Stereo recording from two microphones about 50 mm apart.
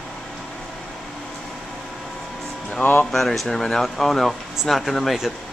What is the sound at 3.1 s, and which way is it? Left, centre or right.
Speech, centre.